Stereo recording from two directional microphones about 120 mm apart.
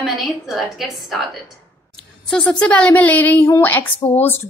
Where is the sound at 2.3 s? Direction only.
5° left (ahead or behind).